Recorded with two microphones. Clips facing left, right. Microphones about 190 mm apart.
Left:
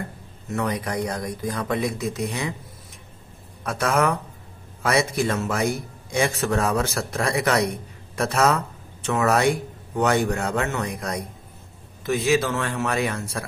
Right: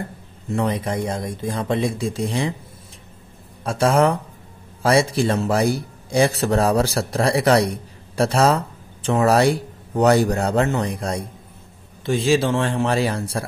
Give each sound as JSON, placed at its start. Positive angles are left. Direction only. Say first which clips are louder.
{"t": 0.5, "sound": "speech", "louder": "right 4 dB", "side_deg": -30}
{"t": 3.6, "sound": "speech", "louder": "right 5 dB", "side_deg": -30}